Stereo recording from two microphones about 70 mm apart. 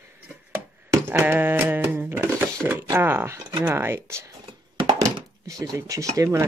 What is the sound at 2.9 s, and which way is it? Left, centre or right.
Speech, right.